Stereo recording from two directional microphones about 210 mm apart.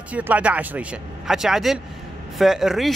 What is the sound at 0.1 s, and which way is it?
Speech, 5° right (ahead or behind).